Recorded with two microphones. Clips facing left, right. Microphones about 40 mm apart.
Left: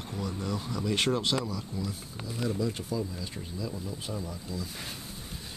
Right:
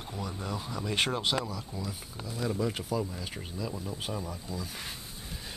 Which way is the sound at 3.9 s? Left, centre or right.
Right.